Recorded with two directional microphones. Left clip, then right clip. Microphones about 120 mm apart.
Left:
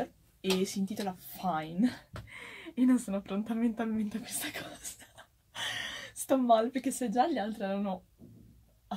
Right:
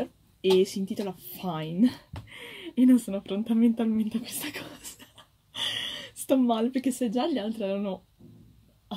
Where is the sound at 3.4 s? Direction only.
20° right (ahead or behind).